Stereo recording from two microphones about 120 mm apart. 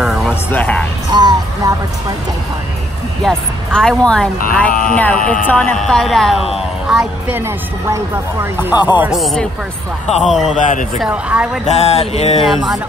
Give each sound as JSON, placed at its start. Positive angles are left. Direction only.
{"t": 0.0, "sound": "music", "side_deg": 0}
{"t": 0.3, "sound": "speech", "side_deg": 15}
{"t": 1.1, "sound": "music", "side_deg": -30}
{"t": 3.2, "sound": "a woman's voice", "side_deg": 5}
{"t": 7.3, "sound": "speech", "side_deg": -20}
{"t": 9.1, "sound": "a woman's voice", "side_deg": 0}
{"t": 10.0, "sound": "a man's voice", "side_deg": 75}
{"t": 11.1, "sound": "speech", "side_deg": -10}
{"t": 11.6, "sound": "a sound", "side_deg": 65}